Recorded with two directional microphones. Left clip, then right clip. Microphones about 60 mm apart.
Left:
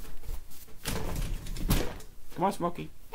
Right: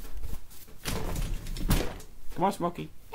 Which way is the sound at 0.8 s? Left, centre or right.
Left.